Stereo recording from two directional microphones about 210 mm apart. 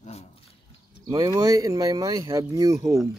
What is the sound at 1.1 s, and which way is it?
Speech, 15° right (ahead or behind).